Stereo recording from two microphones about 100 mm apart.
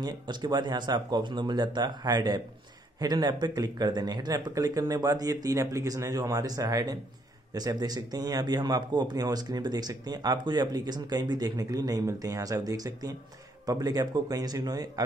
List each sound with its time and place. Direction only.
0.0 s speech: 45° right (ahead or behind)